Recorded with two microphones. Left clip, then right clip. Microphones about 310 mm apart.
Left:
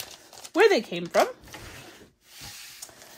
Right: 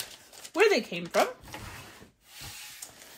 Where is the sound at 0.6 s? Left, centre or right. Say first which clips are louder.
Left 4 dB; left.